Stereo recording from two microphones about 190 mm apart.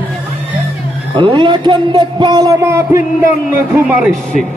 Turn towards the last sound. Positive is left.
turn(degrees=0)  # may be behind; listen again after turning